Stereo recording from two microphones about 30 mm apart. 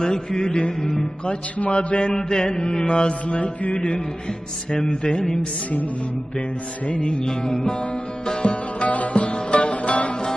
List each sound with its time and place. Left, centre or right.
0.0 s mantra: left
0.6 s mantra: left
2.2 s mantra: left
4.8 s mantra: left
6.9 s music: left
7.2 s music: centre
8.3 s music: left
8.8 s music: left